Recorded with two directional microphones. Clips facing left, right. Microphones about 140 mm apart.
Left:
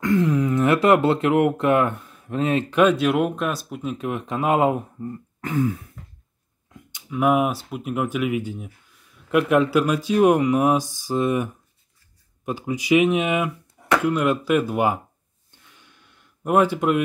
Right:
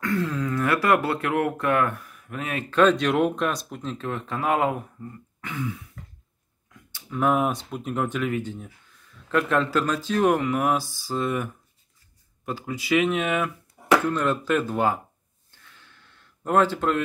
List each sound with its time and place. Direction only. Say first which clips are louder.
0.0 s speech: left 6 dB; 20° left (ahead or behind)
2.7 s speech: even; 10° left (ahead or behind)
5.4 s throat clearing: left 9 dB; 40° left (ahead or behind)
7.1 s speech: left 3 dB; 10° left (ahead or behind)
15.5 s a sound: left 1 dB; 15° left (ahead or behind)